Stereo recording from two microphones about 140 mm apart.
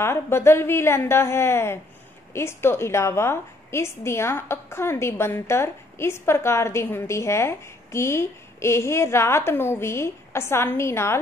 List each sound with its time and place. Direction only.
0.0 s a woman's voice: 20° left (ahead or behind)